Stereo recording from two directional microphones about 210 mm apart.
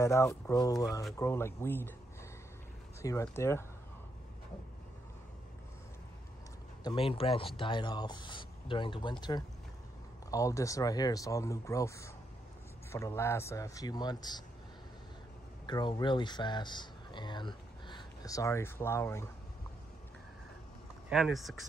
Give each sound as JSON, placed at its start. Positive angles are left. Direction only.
{"t": 0.0, "sound": "speech", "side_deg": 15}
{"t": 3.0, "sound": "speech", "side_deg": 15}
{"t": 6.8, "sound": "speech", "side_deg": 20}
{"t": 10.3, "sound": "speech", "side_deg": 15}
{"t": 15.6, "sound": "speech", "side_deg": 20}
{"t": 21.1, "sound": "speech", "side_deg": 0}